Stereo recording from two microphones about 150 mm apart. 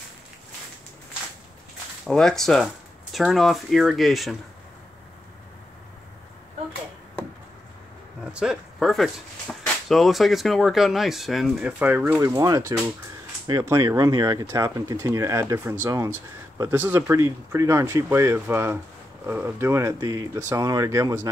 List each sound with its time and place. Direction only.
2.0 s speech: 5° left (ahead or behind)
8.2 s a sound: 5° right (ahead or behind)
9.8 s speech: centre (ahead or behind)
12.4 s speech: 20° right (ahead or behind)